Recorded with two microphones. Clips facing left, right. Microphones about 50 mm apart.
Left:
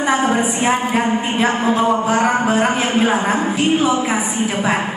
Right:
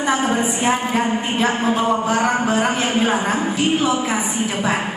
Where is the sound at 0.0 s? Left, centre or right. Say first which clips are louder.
Left 2 dB; centre.